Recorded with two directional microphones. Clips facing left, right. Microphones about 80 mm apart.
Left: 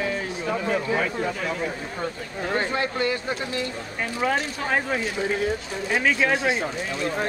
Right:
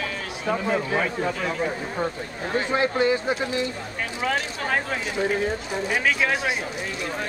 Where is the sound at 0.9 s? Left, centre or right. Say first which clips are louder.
Even; centre.